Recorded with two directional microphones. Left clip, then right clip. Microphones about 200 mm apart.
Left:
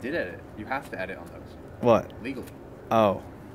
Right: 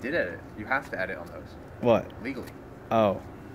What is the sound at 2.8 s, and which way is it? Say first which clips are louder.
Speech: left 2 dB; 10° left (ahead or behind).